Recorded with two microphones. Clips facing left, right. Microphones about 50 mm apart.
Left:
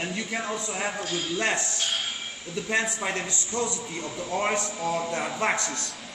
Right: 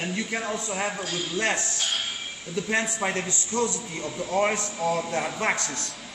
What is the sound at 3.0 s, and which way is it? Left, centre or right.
Speech, right.